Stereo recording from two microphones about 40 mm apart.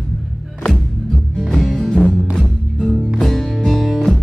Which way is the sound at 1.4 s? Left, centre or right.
Centre.